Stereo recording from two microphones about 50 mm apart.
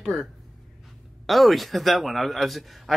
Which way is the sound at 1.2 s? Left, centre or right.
Centre.